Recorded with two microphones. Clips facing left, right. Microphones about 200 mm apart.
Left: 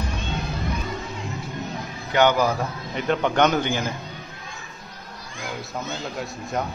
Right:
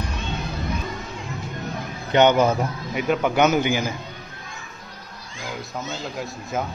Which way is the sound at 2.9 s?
10° right (ahead or behind).